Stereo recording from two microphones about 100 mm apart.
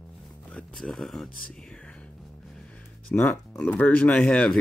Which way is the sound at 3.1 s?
20° left (ahead or behind).